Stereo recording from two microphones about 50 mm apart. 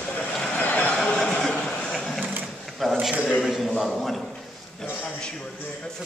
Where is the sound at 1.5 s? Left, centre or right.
Centre.